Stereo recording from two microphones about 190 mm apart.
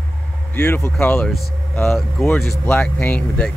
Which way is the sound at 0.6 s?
15° left (ahead or behind).